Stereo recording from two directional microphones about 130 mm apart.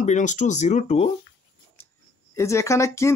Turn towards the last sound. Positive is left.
turn(degrees=20)  # may be behind; listen again after turning